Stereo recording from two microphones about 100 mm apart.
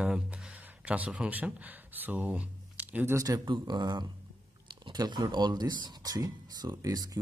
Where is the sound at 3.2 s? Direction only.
40° right (ahead or behind).